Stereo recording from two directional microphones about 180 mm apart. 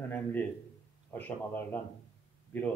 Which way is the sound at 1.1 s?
10° left (ahead or behind).